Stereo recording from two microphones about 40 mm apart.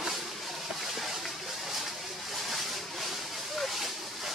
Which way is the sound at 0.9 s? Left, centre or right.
Centre.